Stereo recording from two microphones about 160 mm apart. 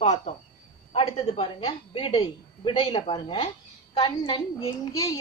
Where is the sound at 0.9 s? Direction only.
40° left (ahead or behind).